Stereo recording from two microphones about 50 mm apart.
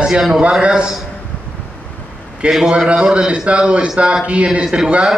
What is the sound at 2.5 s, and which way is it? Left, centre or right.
A man's voice, centre.